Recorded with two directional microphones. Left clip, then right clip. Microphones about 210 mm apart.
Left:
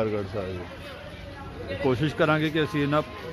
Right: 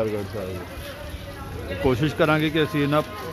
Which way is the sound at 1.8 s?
Centre (ahead or behind).